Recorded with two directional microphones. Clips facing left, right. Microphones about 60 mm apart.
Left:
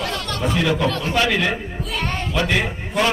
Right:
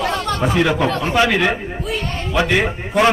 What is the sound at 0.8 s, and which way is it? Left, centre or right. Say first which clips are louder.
Speech: right 3 dB; right.